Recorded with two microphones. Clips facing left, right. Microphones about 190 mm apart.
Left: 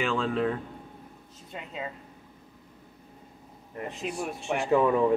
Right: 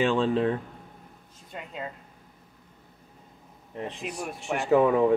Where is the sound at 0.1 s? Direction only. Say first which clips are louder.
Right 3 dB; 30° right (ahead or behind).